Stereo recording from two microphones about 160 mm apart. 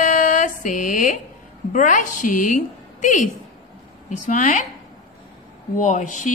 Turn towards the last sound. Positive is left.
turn(degrees=50)  # may be behind; listen again after turning